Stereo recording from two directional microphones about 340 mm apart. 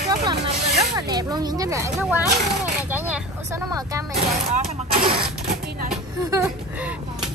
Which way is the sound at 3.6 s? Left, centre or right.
Centre.